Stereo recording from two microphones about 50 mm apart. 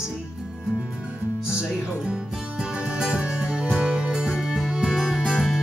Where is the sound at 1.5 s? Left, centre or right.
Centre.